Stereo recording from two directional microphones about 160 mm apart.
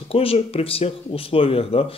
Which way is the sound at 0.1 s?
35° left (ahead or behind).